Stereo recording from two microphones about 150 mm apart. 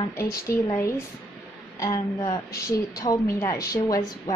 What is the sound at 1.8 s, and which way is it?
A woman's voice, 20° left (ahead or behind).